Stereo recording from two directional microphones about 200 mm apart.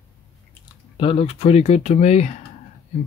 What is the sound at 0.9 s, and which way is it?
Speech, 30° left (ahead or behind).